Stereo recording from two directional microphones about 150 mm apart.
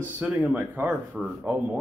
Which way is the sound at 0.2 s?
10° right (ahead or behind).